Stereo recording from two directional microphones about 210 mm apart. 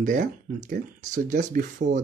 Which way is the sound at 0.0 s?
35° right (ahead or behind).